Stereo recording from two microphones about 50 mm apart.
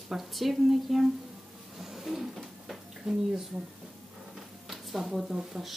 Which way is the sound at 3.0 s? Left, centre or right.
Centre.